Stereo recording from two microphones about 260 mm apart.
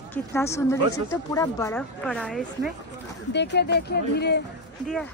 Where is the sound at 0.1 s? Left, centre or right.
Centre.